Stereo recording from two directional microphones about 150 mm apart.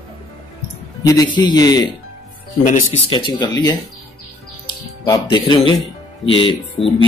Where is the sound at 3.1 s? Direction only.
30° left (ahead or behind).